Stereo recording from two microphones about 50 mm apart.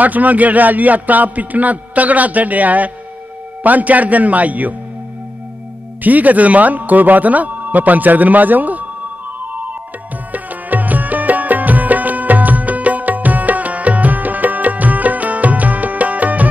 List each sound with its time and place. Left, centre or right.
0.0 s a man's voice: right
6.0 s a man's voice: right
9.4 s music: right